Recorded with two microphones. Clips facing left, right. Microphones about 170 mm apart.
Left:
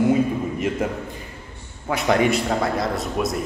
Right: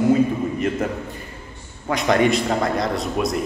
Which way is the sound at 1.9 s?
10° left (ahead or behind).